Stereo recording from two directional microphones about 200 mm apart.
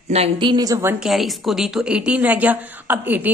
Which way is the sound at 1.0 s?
Centre (ahead or behind).